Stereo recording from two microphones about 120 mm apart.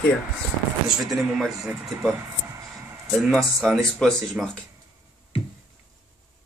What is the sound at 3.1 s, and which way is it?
Speech, 5° right (ahead or behind).